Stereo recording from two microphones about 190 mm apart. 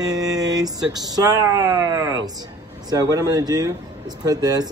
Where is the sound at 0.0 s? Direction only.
20° right (ahead or behind).